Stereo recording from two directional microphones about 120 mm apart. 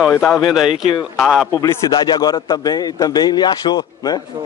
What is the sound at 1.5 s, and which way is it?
A man's voice, 30° left (ahead or behind).